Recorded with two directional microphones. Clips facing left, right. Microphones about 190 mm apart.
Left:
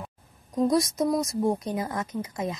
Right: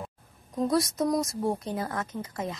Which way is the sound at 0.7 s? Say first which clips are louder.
Left 1 dB; 15° left (ahead or behind).